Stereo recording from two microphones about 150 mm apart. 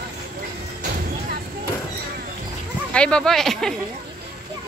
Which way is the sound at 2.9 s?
5° left (ahead or behind).